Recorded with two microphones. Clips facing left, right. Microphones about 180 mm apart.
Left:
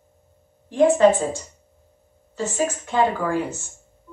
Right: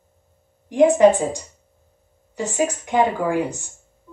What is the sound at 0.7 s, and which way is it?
Speech, 15° right (ahead or behind).